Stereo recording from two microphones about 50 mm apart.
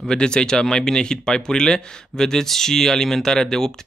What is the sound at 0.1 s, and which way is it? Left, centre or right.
Speech, centre.